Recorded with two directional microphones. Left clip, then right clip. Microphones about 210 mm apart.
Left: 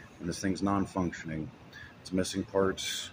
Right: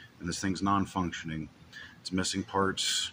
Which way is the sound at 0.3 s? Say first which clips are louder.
Right 2 dB; 15° right (ahead or behind).